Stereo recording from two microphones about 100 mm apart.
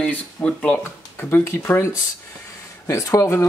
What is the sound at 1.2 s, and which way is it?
Speech, 25° left (ahead or behind).